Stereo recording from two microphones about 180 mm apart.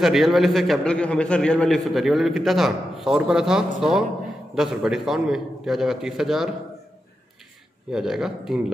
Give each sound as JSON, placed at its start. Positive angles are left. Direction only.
{"t": 0.0, "sound": "a man's voice", "side_deg": 0}
{"t": 7.9, "sound": "a man's voice", "side_deg": -5}